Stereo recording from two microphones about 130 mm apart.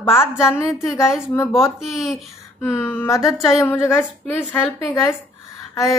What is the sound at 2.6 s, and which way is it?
Speech, 15° left (ahead or behind).